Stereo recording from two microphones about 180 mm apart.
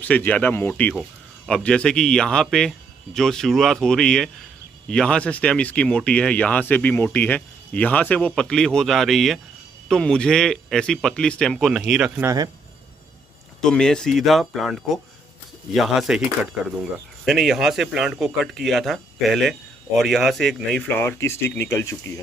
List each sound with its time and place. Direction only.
0.0 s a man's voice: 10° left (ahead or behind)
12.2 s a man's voice: 15° right (ahead or behind)
13.6 s a man's voice: 5° left (ahead or behind)
17.2 s a man's voice: centre (ahead or behind); by 21.9 s 15° left (ahead or behind)